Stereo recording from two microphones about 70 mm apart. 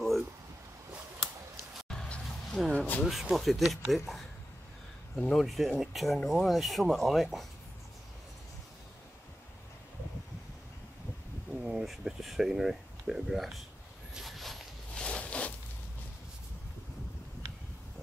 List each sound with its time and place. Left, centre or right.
2.6 s speech: centre
5.1 s speech: centre
11.5 s a sound: centre
11.8 s speech: centre
14.1 s a sound: centre
15.0 s zipper: centre